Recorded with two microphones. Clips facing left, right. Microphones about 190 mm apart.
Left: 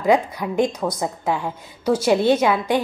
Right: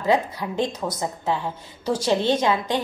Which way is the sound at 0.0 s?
15° left (ahead or behind).